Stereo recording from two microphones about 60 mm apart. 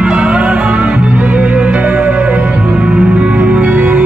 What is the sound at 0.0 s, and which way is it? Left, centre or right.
Music, centre.